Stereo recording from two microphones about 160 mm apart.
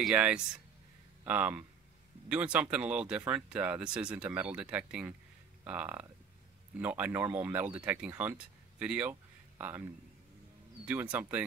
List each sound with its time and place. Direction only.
0.0 s speech: 5° right (ahead or behind)
10.9 s speech: 10° right (ahead or behind)